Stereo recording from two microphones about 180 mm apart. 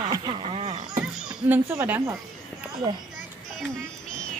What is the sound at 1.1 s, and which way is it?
Speech, 10° right (ahead or behind).